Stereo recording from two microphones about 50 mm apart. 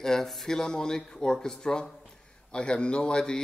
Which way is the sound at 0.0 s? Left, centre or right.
Centre.